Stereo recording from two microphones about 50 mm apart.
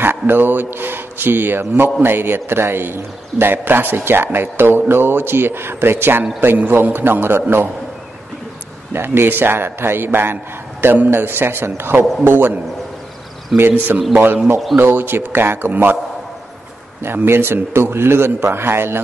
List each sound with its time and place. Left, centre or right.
0.0 s a man's voice: right
8.9 s a man's voice: right
13.5 s a man's voice: centre
14.1 s a man's voice: right
17.0 s a man's voice: right